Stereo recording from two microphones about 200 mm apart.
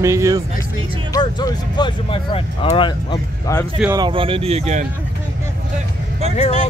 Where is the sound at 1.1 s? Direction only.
20° left (ahead or behind).